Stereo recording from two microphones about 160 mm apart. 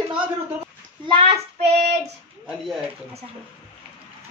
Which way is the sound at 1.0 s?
35° right (ahead or behind).